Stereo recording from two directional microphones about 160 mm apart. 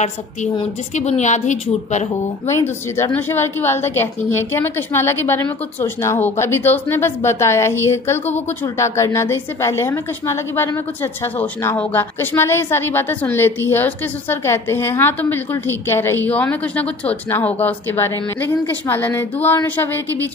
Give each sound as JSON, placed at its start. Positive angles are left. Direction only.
{"t": 0.9, "sound": "a woman's voice", "side_deg": 45}
{"t": 2.4, "sound": "a woman's voice", "side_deg": 15}